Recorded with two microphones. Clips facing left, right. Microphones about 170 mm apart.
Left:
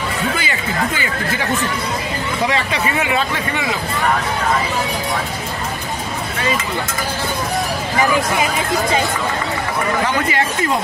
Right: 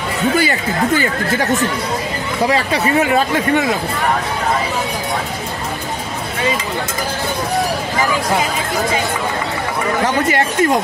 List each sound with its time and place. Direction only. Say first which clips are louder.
0.4 s speech: right 5 dB; 40° right (ahead or behind)